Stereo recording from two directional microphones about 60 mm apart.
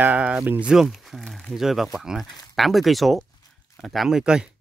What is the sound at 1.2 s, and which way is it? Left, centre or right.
Speech, centre.